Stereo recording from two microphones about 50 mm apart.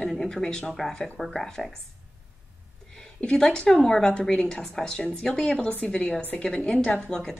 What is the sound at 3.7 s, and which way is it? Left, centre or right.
A woman's voice, centre.